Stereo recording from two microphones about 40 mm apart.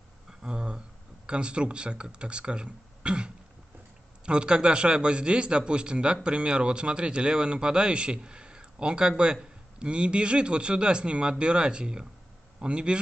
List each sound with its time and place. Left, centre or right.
0.3 s speech: centre
4.3 s speech: right